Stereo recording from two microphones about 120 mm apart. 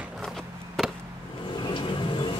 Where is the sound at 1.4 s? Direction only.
40° left (ahead or behind).